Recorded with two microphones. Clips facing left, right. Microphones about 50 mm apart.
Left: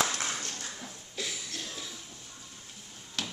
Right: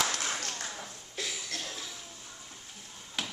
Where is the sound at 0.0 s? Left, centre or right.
Left.